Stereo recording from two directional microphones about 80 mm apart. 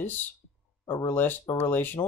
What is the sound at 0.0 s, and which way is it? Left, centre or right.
Speech, left.